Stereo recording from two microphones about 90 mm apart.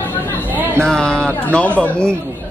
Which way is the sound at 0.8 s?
10° left (ahead or behind).